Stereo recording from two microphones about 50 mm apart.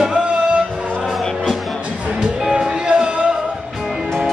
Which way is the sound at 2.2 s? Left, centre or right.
Centre.